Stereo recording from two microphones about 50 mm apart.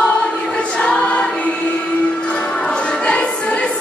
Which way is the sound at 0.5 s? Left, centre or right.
Left.